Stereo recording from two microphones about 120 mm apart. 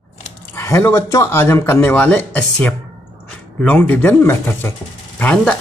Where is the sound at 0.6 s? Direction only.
20° left (ahead or behind).